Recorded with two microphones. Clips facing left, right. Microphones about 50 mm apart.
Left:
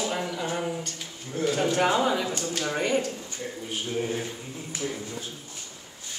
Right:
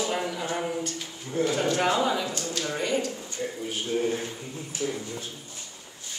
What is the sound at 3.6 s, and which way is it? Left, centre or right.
Speech, centre.